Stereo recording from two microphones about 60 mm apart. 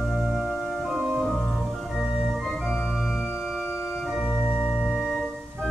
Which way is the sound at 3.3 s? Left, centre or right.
Centre.